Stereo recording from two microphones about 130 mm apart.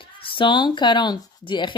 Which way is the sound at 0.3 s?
40° left (ahead or behind).